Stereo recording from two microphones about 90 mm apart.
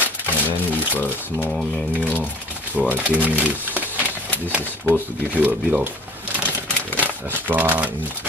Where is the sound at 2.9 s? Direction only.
15° right (ahead or behind).